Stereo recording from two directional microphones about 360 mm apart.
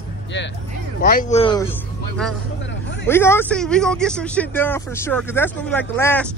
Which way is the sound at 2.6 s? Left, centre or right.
Left.